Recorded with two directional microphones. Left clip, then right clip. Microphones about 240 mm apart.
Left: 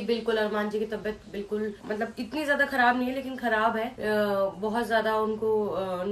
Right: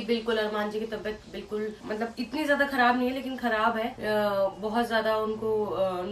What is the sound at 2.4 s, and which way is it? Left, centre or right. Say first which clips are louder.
A woman's voice: even; centre.